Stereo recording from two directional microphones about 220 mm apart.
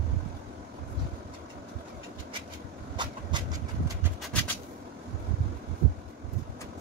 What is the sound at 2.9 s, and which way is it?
Vehicle, 20° right (ahead or behind).